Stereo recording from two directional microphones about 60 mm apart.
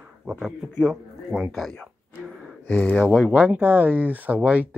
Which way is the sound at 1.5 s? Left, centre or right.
Centre.